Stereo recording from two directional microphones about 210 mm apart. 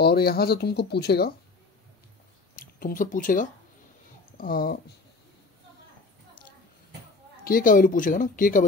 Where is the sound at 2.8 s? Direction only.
40° left (ahead or behind).